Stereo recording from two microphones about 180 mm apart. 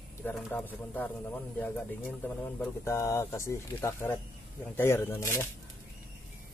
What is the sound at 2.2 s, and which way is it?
Speech, 10° left (ahead or behind).